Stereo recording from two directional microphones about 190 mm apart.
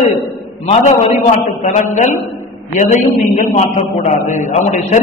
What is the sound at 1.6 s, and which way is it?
Speech, 40° left (ahead or behind).